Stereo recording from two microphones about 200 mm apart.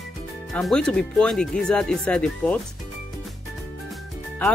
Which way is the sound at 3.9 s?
5° left (ahead or behind).